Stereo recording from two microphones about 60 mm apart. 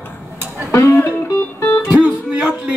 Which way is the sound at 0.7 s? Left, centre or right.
Left.